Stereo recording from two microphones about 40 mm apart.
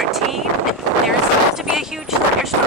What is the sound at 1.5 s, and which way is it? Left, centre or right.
Speech, centre.